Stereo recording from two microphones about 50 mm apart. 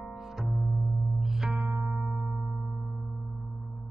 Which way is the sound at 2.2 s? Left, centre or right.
Centre.